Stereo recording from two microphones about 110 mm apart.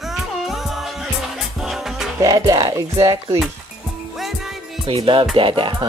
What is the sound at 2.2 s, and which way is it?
Speech, 35° right (ahead or behind).